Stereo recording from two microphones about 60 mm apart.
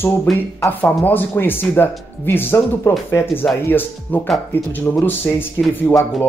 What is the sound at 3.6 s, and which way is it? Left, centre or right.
Speech, left.